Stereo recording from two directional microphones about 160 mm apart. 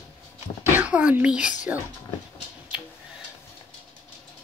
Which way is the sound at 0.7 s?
10° right (ahead or behind).